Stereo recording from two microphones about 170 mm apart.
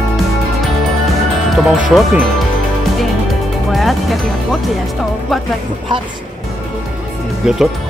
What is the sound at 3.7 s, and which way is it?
Music, centre (ahead or behind).